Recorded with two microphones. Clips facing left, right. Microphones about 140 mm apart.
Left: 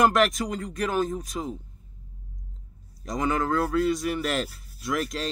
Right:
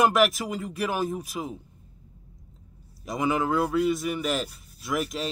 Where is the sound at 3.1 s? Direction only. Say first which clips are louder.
Even; 5° right (ahead or behind).